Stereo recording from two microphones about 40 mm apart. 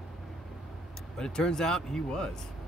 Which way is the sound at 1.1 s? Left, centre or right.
Centre.